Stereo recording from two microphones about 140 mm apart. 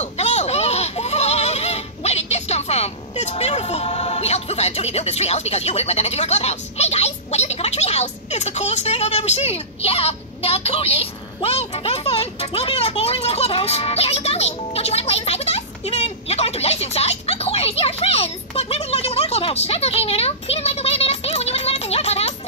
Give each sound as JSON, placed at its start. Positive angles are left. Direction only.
{"t": 0.0, "sound": "speech", "side_deg": 50}